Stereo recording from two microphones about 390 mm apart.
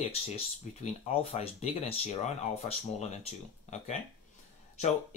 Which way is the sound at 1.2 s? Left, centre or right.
Centre.